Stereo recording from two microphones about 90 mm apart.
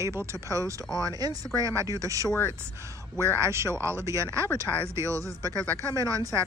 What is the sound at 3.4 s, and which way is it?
Speech, 30° right (ahead or behind).